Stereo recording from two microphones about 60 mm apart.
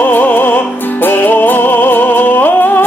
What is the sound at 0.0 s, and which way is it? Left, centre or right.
Music, left.